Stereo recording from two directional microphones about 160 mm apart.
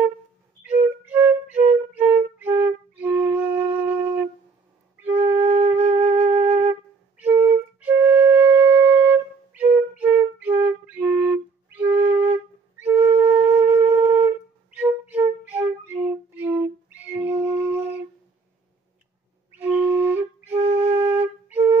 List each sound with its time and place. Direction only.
0.7 s flute: 10° right (ahead or behind)
6.0 s flute: 40° right (ahead or behind)
6.7 s flute: 10° right (ahead or behind)
13.2 s wind instrument: 10° right (ahead or behind)
19.5 s flute: 15° right (ahead or behind)